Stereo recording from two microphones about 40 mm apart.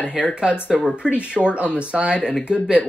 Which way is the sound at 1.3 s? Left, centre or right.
Right.